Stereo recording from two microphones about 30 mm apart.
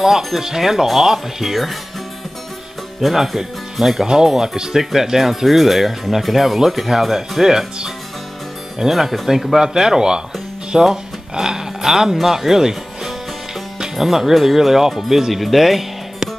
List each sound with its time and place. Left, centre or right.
0.4 s speech: centre
3.0 s speech: centre
4.0 s speech: right; by 9.6 s centre
9.6 s speech: centre